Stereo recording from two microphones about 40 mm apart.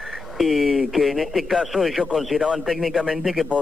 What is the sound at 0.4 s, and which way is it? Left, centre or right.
A man's voice, centre.